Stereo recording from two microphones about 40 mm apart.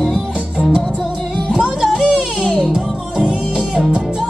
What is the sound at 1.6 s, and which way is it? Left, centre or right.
Music, centre.